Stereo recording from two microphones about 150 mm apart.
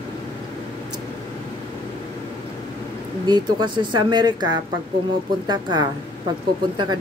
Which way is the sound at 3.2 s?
30° right (ahead or behind).